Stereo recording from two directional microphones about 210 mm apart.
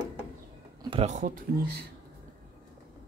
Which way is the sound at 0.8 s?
30° right (ahead or behind).